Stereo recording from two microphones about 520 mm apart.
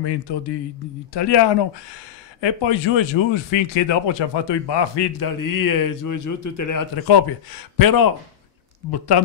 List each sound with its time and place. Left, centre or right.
0.0 s speech: left